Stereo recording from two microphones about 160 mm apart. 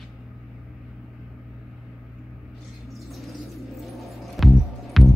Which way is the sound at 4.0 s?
Centre (ahead or behind).